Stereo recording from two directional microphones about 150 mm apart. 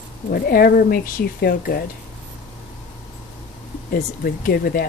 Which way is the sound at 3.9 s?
75° left (ahead or behind).